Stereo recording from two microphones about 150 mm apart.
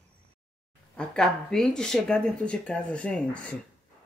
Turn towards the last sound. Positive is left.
turn(degrees=5)  # may be behind; listen again after turning